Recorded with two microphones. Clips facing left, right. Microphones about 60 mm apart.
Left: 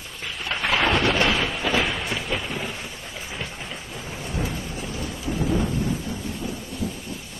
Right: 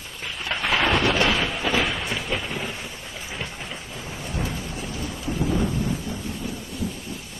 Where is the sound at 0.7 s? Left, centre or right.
Left.